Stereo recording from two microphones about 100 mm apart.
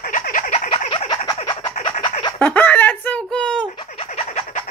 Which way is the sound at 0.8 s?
60° left (ahead or behind).